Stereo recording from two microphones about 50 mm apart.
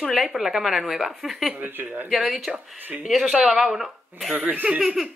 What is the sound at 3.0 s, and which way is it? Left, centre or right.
Speech, centre.